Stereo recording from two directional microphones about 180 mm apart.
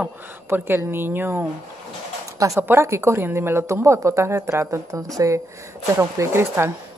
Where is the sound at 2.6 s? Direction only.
15° right (ahead or behind).